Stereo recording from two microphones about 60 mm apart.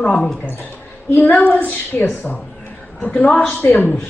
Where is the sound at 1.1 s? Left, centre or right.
Left.